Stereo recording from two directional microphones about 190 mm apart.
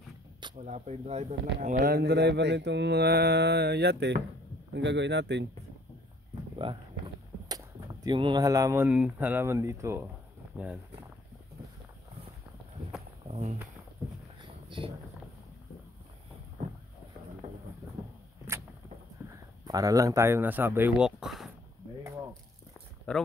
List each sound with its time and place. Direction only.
0.6 s speech: 35° right (ahead or behind)
1.8 s mantra: 60° right (ahead or behind)
4.7 s speech: 65° right (ahead or behind)
6.6 s speech: 30° right (ahead or behind)
13.3 s speech: 35° right (ahead or behind)
14.4 s a sound: 25° right (ahead or behind)
19.2 s speech: 20° right (ahead or behind); by 21.5 s centre (ahead or behind)
23.1 s speech: 5° left (ahead or behind)